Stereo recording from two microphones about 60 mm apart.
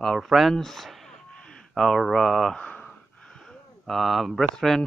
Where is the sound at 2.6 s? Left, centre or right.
Centre.